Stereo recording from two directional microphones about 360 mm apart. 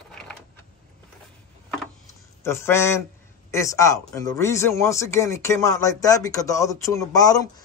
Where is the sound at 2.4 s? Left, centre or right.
Centre.